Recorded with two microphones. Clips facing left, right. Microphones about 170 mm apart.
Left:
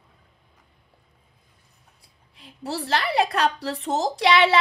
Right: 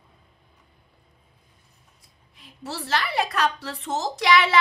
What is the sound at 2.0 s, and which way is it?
A woman's voice, 30° left (ahead or behind).